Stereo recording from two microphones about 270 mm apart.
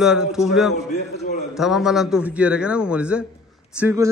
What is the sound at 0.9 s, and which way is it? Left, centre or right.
Speech, left.